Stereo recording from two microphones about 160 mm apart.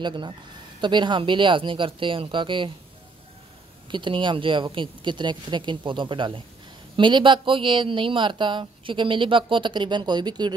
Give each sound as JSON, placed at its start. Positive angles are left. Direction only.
{"t": 0.0, "sound": "speech", "side_deg": -30}
{"t": 3.9, "sound": "speech", "side_deg": -30}